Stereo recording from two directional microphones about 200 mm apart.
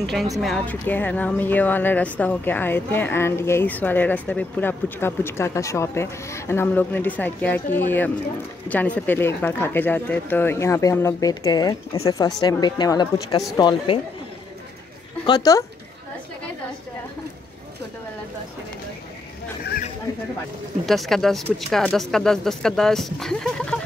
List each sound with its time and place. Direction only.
0.0 s speech: centre (ahead or behind); by 13.9 s 20° left (ahead or behind)
15.2 s speech: 20° left (ahead or behind)
20.8 s speech: centre (ahead or behind)